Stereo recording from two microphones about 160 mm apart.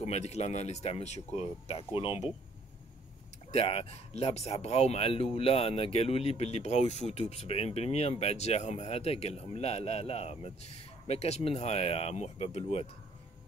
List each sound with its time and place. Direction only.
0.0 s speech: 45° left (ahead or behind)
3.5 s speech: 35° left (ahead or behind)